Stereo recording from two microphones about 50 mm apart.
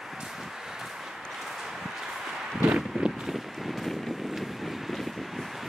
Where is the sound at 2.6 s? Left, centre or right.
Centre.